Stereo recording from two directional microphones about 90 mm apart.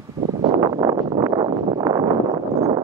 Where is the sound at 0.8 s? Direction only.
45° right (ahead or behind).